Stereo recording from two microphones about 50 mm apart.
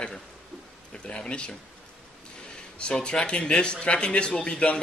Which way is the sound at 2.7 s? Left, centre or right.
Centre.